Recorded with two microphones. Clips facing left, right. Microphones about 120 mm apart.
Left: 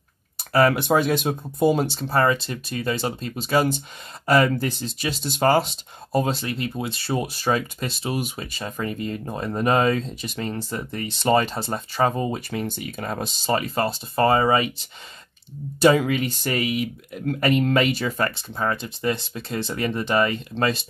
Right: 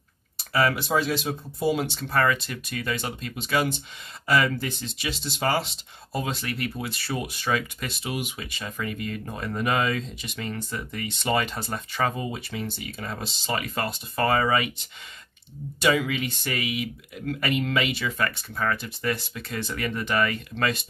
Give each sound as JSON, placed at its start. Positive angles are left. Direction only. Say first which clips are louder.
{"t": 0.5, "sound": "speech", "louder": "left 5 dB", "side_deg": 45}
{"t": 13.5, "sound": "speech", "louder": "left 6 dB", "side_deg": 35}
{"t": 15.8, "sound": "speech", "louder": "left 6 dB", "side_deg": 40}